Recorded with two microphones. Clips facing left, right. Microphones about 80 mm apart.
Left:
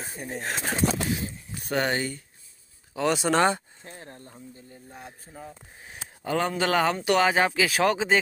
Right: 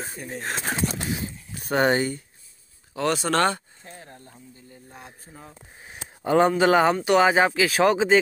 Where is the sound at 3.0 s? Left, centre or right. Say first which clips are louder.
Even; centre.